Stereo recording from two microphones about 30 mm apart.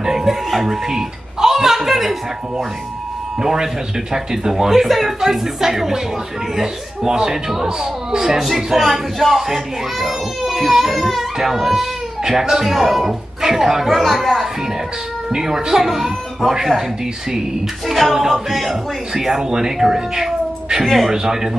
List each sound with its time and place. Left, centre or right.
0.0 s a man's voice: centre
8.3 s a man's voice: centre
13.9 s a child's voice: centre
15.3 s a man's voice: centre
18.1 s a man's voice: centre
20.8 s a child's voice: centre
21.1 s a man's voice: centre